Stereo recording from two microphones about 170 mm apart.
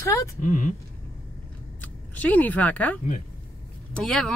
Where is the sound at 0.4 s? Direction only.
50° left (ahead or behind).